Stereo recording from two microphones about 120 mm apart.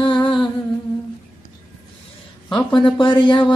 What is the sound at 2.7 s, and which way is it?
Speech, 40° left (ahead or behind).